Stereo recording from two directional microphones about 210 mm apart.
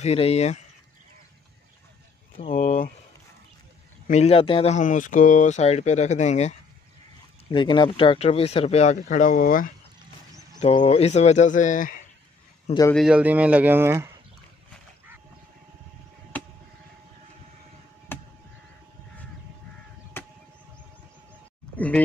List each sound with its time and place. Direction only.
0.0 s speech: 30° left (ahead or behind)
2.3 s speech: 30° left (ahead or behind)
4.1 s speech: 30° left (ahead or behind)
7.5 s speech: 20° left (ahead or behind); by 9.7 s 40° left (ahead or behind)
10.6 s speech: 25° left (ahead or behind)
12.9 s speech: 5° right (ahead or behind)
18.1 s chop: 10° left (ahead or behind)
20.2 s a sound: 10° left (ahead or behind)
21.7 s speech: 5° left (ahead or behind)